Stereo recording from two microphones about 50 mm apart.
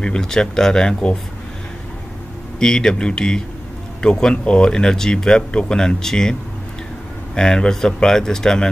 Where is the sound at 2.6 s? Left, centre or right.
Centre.